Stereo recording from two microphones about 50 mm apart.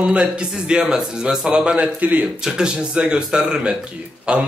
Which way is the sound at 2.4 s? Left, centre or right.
Centre.